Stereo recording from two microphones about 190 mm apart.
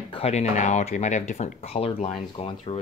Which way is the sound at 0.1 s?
35° left (ahead or behind).